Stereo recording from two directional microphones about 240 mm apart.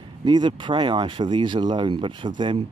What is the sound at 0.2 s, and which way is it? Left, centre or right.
Speech, centre.